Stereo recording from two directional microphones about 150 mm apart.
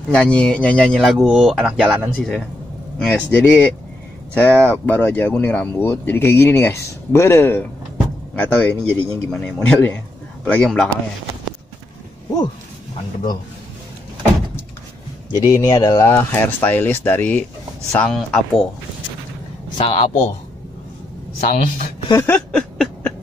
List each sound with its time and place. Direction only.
0.1 s speech: 10° left (ahead or behind)
15.3 s speech: 20° left (ahead or behind); by 18.6 s 5° left (ahead or behind)
19.8 s a man's voice: 40° left (ahead or behind)
21.4 s speech: 70° left (ahead or behind)
22.1 s a sound: 10° left (ahead or behind)